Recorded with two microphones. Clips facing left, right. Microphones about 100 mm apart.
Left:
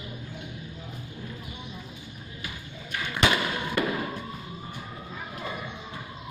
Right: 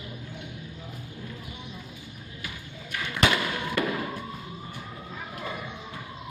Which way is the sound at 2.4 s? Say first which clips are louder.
Even; 20° left (ahead or behind).